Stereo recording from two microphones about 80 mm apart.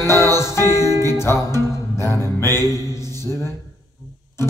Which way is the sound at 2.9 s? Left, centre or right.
Left.